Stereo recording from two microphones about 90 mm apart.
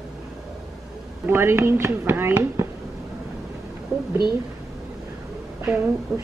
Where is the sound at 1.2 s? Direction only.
25° right (ahead or behind).